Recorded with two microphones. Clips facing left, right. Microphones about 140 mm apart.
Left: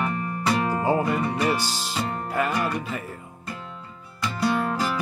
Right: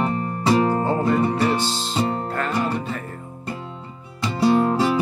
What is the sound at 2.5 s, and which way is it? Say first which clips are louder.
Music: right 3 dB; 30° right (ahead or behind).